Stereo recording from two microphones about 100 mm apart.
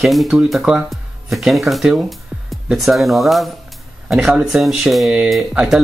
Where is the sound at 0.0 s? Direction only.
Centre (ahead or behind).